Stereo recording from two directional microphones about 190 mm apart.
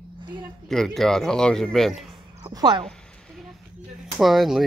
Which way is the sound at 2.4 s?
25° right (ahead or behind).